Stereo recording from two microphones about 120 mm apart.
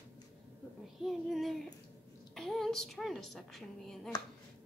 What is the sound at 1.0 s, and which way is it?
A woman's voice, centre (ahead or behind).